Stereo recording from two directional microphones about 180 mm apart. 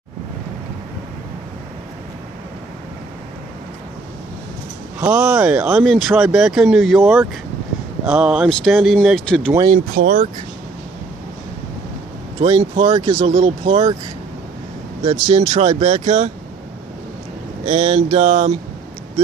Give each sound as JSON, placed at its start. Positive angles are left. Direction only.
{"t": 5.0, "sound": "speech", "side_deg": -10}
{"t": 9.9, "sound": "speech", "side_deg": -50}
{"t": 12.4, "sound": "speech", "side_deg": -35}
{"t": 15.0, "sound": "speech", "side_deg": -40}
{"t": 17.6, "sound": "speech", "side_deg": -40}